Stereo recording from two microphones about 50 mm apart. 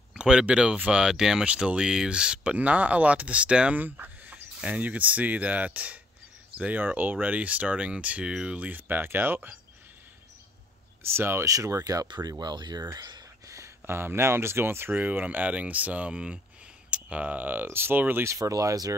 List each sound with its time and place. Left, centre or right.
0.2 s speech: centre
1.4 s speech: right
3.7 s a sound: right
4.6 s speech: right
8.3 s speech: centre
8.5 s speech: right
11.0 s speech: right
11.4 s speech: right
12.2 s speech: right
13.8 s speech: right
15.0 s speech: right
18.2 s speech: right